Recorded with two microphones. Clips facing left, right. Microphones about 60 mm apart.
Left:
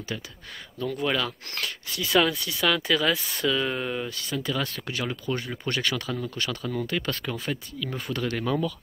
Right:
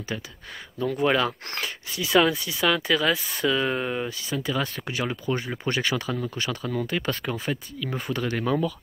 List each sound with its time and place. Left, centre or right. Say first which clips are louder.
0.1 s speech: right 2 dB; centre
1.6 s speech: even; centre
3.4 s speech: right 2 dB; centre